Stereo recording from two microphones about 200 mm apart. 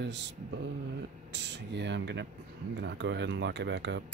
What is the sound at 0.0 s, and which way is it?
Speech, 60° right (ahead or behind).